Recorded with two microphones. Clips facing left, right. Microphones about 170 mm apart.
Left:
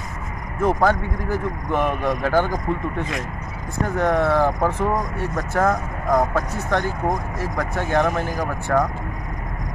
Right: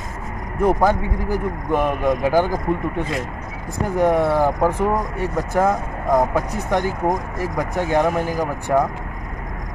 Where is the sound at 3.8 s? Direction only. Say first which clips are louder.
Right 3 dB; 10° right (ahead or behind).